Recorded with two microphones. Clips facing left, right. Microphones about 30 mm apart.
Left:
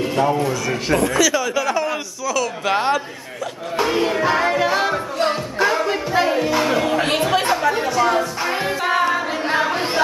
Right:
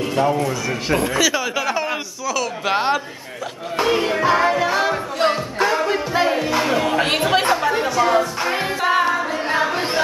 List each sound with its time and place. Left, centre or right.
0.0 s a sound: centre
0.5 s speech: centre
3.7 s music: centre
7.2 s speech: centre
7.6 s music: centre
9.5 s chatter: centre